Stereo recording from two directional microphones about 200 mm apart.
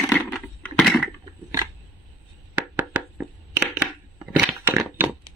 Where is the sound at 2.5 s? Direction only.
5° right (ahead or behind).